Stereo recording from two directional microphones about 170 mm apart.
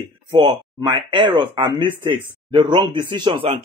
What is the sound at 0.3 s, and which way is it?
Speech, 30° right (ahead or behind).